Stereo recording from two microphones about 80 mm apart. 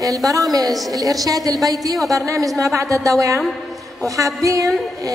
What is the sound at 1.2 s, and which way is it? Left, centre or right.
A woman's voice, right.